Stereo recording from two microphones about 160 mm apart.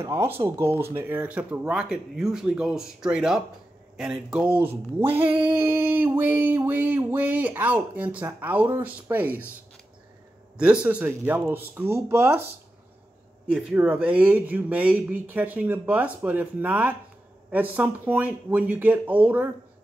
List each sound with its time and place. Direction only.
0.0 s speech: 15° right (ahead or behind)
5.0 s a sound: 35° right (ahead or behind)
5.5 s speech: 10° right (ahead or behind)
10.6 s speech: 5° right (ahead or behind)
13.5 s speech: 5° right (ahead or behind)